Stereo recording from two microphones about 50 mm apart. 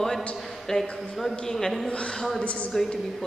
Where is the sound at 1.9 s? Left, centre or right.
Centre.